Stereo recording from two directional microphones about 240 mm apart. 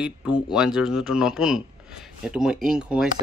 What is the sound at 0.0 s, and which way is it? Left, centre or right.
Speech, centre.